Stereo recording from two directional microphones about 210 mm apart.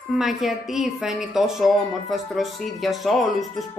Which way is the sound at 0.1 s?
Centre (ahead or behind).